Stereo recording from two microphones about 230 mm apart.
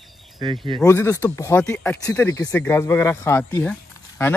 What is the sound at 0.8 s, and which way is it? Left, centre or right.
Speech, centre.